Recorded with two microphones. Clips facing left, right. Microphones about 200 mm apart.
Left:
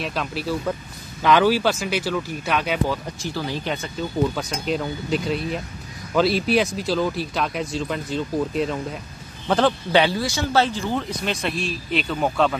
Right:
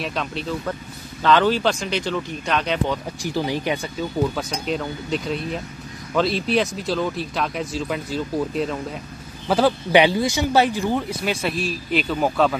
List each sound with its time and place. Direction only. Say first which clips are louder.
0.0 s speech: even; centre (ahead or behind)
3.2 s speech: right 4 dB; 15° right (ahead or behind)
4.4 s speech: even; centre (ahead or behind)